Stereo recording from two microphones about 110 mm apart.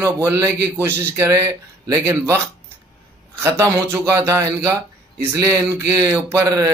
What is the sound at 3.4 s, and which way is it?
Speech, 25° right (ahead or behind).